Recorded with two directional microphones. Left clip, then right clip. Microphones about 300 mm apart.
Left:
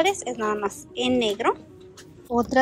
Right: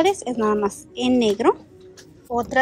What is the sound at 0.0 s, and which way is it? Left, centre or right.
A woman's voice, centre.